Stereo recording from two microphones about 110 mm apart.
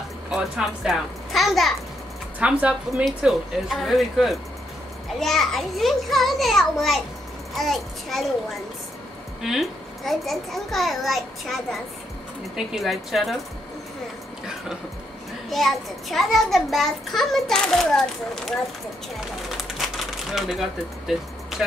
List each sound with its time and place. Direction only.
0.3 s a child's voice: 5° right (ahead or behind)
2.4 s a woman's voice: 10° right (ahead or behind)
9.4 s a child's voice: centre (ahead or behind)
15.5 s a child's voice: centre (ahead or behind)
19.1 s bird: centre (ahead or behind)
21.6 s a woman's voice: 10° right (ahead or behind)